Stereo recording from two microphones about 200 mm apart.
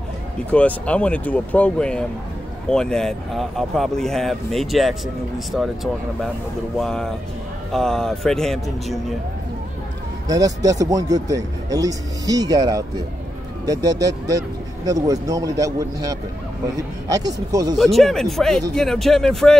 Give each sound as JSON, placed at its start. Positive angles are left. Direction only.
{"t": 0.5, "sound": "speech", "side_deg": 5}
{"t": 6.8, "sound": "speech", "side_deg": 0}
{"t": 10.2, "sound": "speech", "side_deg": -15}
{"t": 17.7, "sound": "speech", "side_deg": 0}